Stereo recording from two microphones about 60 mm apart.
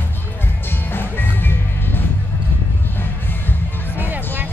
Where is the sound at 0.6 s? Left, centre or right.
Left.